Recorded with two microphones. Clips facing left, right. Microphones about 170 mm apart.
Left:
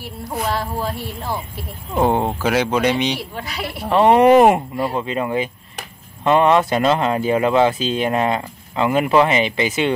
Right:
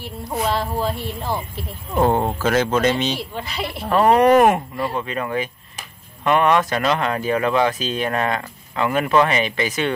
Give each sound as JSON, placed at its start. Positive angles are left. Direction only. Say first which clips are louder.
{"t": 0.0, "sound": "a woman's voice", "louder": "right 1 dB", "side_deg": 0}
{"t": 2.0, "sound": "speech", "louder": "even", "side_deg": 10}
{"t": 3.3, "sound": "a woman's voice", "louder": "even", "side_deg": 5}
{"t": 3.9, "sound": "speech", "louder": "left 2 dB", "side_deg": 25}